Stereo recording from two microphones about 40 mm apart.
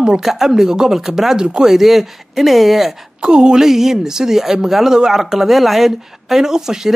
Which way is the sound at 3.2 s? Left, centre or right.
Right.